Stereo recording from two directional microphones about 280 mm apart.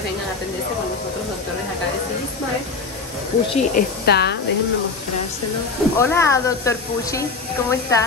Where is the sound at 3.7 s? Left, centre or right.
Left.